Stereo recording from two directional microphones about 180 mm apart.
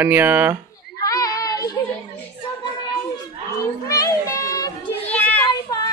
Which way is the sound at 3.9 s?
20° left (ahead or behind).